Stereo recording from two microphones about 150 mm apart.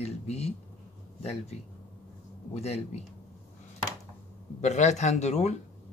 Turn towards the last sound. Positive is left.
turn(degrees=50)  # may be behind; listen again after turning